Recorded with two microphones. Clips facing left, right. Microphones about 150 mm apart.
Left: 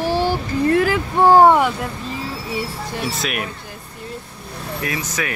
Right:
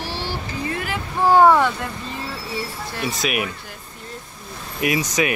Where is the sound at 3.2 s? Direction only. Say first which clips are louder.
Right 2 dB; 5° right (ahead or behind).